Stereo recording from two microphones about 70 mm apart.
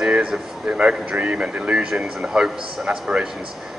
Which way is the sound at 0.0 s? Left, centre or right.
Centre.